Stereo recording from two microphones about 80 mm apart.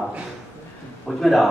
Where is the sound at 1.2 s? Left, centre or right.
Centre.